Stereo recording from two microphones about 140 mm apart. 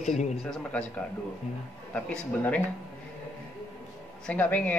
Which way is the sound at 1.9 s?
10° left (ahead or behind).